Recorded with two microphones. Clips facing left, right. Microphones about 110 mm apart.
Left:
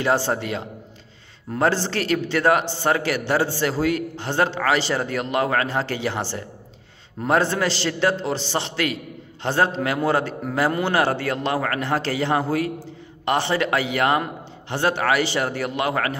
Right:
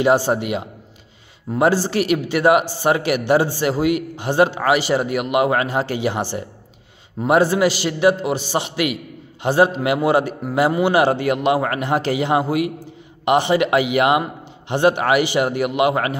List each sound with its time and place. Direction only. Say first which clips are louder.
0.0 s a man's voice: right 5 dB; 15° right (ahead or behind)